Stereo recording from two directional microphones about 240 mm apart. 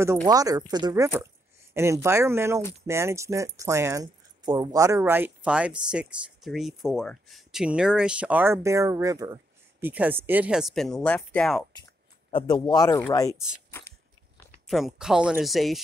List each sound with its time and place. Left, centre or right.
0.3 s speech: centre
12.3 s speech: left
13.7 s a sound: centre
14.7 s speech: centre